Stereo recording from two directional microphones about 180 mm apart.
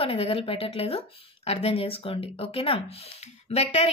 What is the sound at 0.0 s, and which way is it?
A woman's voice, 30° left (ahead or behind).